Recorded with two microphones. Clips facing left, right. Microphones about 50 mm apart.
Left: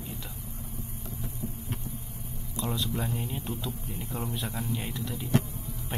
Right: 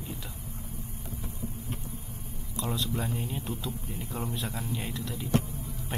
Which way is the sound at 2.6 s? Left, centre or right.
Centre.